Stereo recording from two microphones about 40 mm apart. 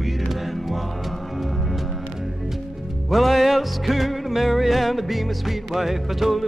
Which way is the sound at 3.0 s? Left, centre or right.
Centre.